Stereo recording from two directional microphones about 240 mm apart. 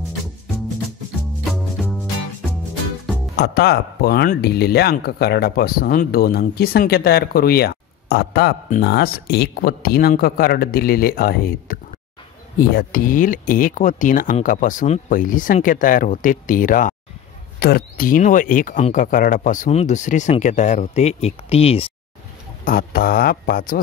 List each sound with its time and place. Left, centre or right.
1.5 s music: centre
3.3 s speech: left
22.7 s speech: left